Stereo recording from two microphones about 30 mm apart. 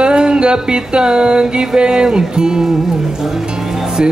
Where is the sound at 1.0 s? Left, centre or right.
Right.